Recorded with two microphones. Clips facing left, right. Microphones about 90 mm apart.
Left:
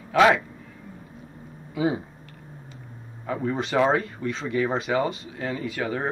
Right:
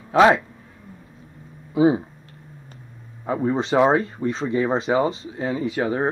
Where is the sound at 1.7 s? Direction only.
25° right (ahead or behind).